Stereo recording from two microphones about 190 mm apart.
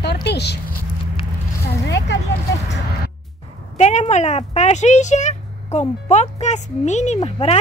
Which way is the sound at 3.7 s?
35° left (ahead or behind).